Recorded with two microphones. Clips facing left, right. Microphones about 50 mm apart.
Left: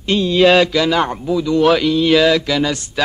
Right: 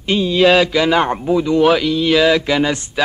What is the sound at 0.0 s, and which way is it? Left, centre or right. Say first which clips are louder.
Mantra: left 1 dB; centre.